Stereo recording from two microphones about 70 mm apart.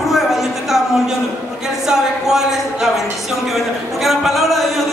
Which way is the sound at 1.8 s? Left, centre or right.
Centre.